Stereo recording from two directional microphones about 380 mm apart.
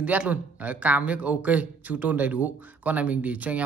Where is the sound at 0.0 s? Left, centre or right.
Centre.